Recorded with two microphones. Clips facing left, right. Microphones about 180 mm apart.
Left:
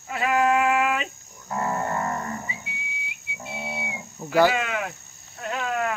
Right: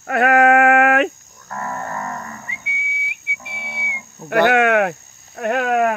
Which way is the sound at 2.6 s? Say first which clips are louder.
Right 5 dB; 65° right (ahead or behind).